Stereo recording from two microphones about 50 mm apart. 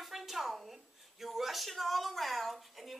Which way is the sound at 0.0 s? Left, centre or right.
Centre.